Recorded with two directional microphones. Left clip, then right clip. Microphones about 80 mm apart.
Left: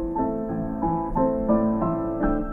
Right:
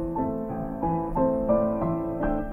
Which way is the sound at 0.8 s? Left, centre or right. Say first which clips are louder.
Left 1 dB; right.